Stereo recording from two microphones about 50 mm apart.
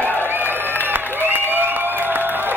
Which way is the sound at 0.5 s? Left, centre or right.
Right.